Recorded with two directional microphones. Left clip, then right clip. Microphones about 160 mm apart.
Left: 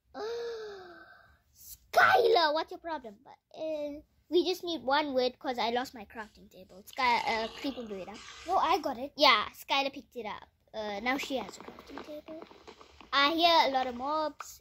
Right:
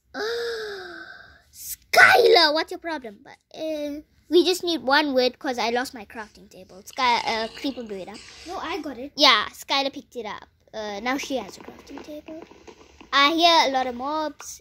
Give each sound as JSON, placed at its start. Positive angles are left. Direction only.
{"t": 0.1, "sound": "gasp", "side_deg": -20}
{"t": 1.9, "sound": "a child's voice", "side_deg": -15}
{"t": 8.1, "sound": "speech", "side_deg": 20}
{"t": 8.5, "sound": "speech", "side_deg": 90}
{"t": 9.1, "sound": "a woman's voice", "side_deg": -5}
{"t": 13.1, "sound": "a child's voice", "side_deg": -5}